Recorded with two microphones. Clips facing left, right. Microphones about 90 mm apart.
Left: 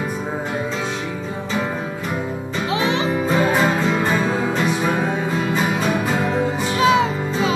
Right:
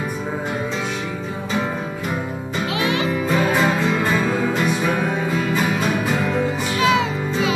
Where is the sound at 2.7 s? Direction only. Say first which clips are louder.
Left 2 dB; 25° left (ahead or behind).